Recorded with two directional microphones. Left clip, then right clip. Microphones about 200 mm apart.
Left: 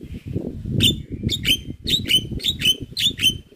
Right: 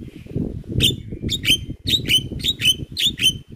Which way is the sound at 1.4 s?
20° right (ahead or behind).